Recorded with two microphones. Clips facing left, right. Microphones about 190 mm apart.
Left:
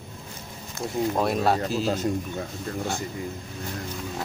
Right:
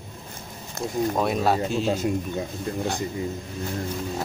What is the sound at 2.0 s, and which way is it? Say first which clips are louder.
Speech: right 2 dB; 10° right (ahead or behind).